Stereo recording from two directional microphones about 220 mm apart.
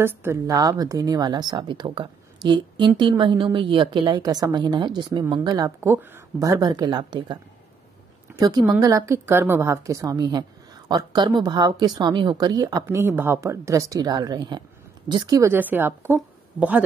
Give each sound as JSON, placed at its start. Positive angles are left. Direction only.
{"t": 0.0, "sound": "a woman's voice", "side_deg": -10}